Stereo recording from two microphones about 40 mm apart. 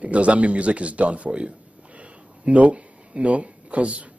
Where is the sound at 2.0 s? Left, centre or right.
Right.